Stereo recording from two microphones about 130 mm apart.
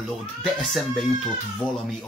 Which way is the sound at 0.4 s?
Centre (ahead or behind).